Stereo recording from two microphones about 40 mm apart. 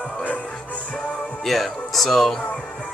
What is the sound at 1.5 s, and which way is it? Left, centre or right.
Speech, centre.